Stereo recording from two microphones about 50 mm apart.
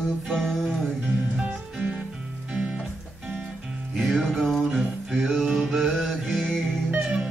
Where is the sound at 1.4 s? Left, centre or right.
Right.